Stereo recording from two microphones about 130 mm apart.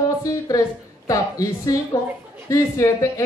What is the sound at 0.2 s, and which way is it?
A woman's voice, 25° left (ahead or behind).